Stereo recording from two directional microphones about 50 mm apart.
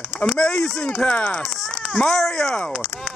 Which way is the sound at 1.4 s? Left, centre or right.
Centre.